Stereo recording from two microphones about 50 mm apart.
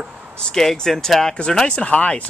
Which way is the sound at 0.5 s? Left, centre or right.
Centre.